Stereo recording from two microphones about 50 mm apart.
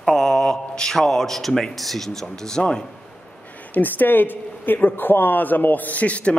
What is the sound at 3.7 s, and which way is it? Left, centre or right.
Speech, left.